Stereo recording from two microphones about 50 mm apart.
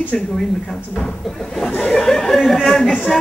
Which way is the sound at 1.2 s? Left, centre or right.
Centre.